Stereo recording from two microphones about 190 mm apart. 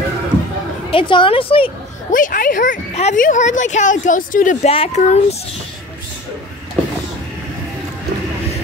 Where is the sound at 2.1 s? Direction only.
45° left (ahead or behind).